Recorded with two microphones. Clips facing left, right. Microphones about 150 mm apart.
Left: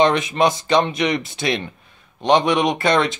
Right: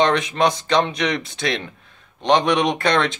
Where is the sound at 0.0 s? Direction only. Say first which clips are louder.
Left 2 dB; 5° left (ahead or behind).